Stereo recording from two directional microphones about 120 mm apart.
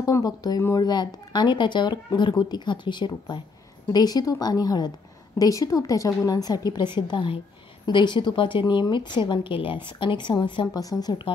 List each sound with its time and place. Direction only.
0.0 s speech: 30° left (ahead or behind)